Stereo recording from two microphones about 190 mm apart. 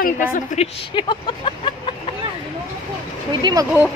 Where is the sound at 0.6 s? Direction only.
25° left (ahead or behind).